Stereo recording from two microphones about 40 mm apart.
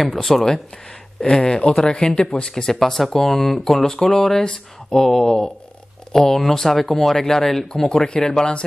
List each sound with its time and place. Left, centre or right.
0.0 s speech: centre
1.2 s speech: left